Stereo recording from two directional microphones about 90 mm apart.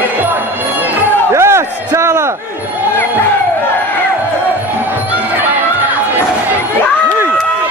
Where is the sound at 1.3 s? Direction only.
30° right (ahead or behind).